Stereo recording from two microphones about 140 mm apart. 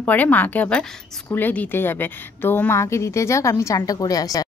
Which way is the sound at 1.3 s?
15° left (ahead or behind).